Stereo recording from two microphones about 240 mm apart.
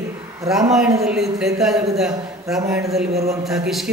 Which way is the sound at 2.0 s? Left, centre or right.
Centre.